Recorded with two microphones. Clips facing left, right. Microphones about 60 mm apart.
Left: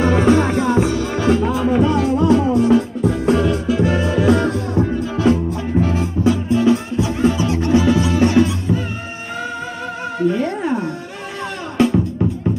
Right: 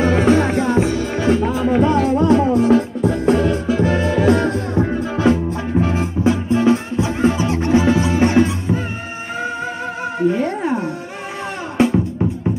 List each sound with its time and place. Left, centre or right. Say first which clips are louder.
0.0 s music: even; right
10.1 s music: even; right